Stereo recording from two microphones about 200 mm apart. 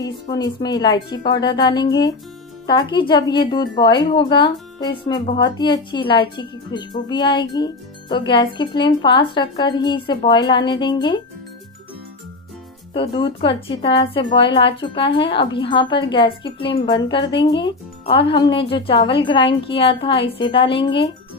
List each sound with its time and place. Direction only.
0.0 s speech: 20° left (ahead or behind)
12.9 s speech: 25° left (ahead or behind)